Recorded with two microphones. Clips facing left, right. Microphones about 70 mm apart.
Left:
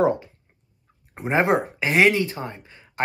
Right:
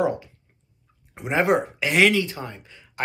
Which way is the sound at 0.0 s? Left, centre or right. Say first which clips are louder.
Left 3 dB; left.